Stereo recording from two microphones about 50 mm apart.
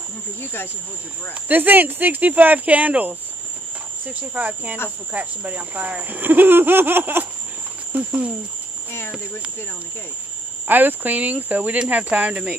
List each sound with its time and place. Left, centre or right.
0.4 s speech: left
1.5 s speech: right
7.9 s speech: right
10.7 s speech: right